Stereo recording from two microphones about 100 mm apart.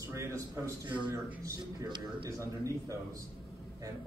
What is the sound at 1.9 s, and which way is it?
Speech, 50° right (ahead or behind).